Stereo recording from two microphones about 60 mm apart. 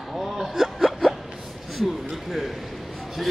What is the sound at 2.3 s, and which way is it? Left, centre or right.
Speech, centre.